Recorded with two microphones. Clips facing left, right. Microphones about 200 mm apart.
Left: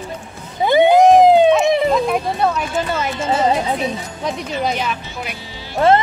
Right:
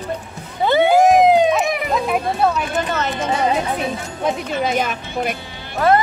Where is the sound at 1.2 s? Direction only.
30° left (ahead or behind).